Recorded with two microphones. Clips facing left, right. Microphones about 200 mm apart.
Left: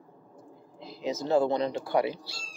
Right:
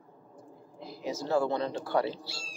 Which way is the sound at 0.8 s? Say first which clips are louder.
Left 3 dB; 20° left (ahead or behind).